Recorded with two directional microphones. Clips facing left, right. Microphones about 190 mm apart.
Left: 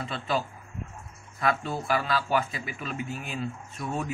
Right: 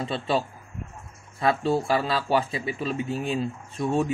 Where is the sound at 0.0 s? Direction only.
30° right (ahead or behind).